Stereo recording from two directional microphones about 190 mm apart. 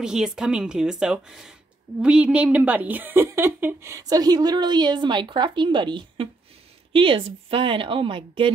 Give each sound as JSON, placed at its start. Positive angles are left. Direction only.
{"t": 0.0, "sound": "a woman's voice", "side_deg": -5}